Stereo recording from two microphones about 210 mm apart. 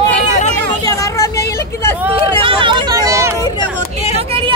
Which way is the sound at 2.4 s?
20° right (ahead or behind).